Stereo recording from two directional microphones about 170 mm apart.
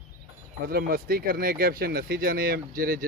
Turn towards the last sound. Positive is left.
turn(degrees=-55)  # may be behind; listen again after turning